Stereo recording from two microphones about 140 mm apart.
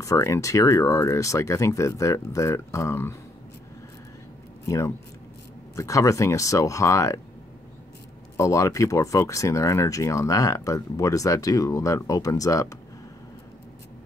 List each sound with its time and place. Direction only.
0.0 s speech: 20° left (ahead or behind)
4.6 s speech: 20° left (ahead or behind)
8.4 s speech: 20° left (ahead or behind)